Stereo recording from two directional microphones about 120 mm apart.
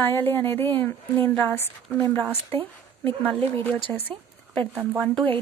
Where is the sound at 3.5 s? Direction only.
15° left (ahead or behind).